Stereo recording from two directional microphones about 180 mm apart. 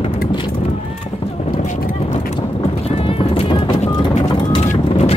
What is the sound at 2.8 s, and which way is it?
Music, 30° left (ahead or behind).